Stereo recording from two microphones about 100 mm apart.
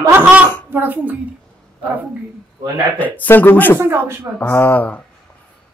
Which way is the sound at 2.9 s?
15° left (ahead or behind).